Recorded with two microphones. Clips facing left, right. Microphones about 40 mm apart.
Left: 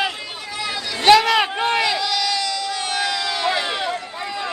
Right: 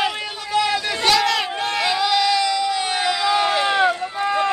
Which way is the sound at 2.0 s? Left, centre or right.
Centre.